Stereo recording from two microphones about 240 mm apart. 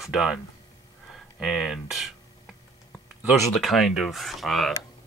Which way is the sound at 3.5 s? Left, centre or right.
Centre.